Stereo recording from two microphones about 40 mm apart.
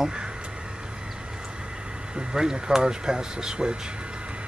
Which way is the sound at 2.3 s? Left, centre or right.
Centre.